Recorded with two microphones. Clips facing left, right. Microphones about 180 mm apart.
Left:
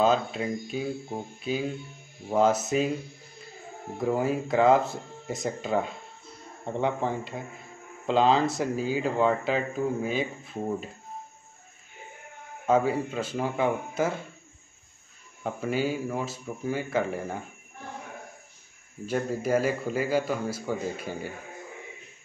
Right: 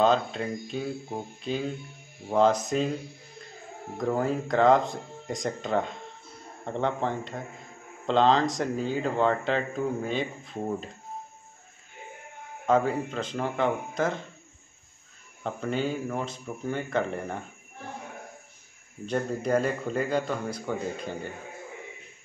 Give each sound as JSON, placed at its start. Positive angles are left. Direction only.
{"t": 0.0, "sound": "speech", "side_deg": 5}
{"t": 4.0, "sound": "speech", "side_deg": 5}
{"t": 12.6, "sound": "speech", "side_deg": 5}
{"t": 15.4, "sound": "speech", "side_deg": 5}
{"t": 19.0, "sound": "speech", "side_deg": 5}